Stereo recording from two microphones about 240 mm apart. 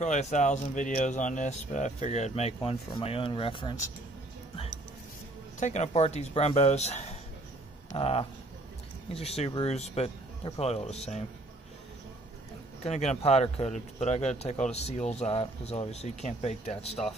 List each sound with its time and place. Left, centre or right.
0.0 s speech: left
5.6 s speech: left
12.8 s speech: left